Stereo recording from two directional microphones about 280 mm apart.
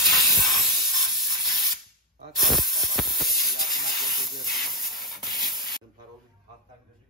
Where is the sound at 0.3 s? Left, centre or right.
Centre.